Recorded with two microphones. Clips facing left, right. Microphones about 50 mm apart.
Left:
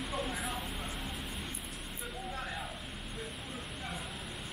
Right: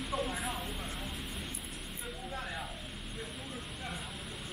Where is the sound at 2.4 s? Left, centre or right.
Centre.